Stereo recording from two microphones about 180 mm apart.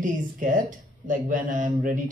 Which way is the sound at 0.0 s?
45° right (ahead or behind).